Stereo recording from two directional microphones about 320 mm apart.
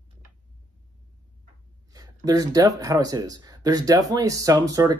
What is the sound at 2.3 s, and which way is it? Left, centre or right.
Speech, centre.